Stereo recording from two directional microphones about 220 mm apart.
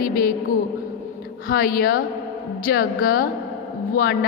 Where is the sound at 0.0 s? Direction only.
40° left (ahead or behind).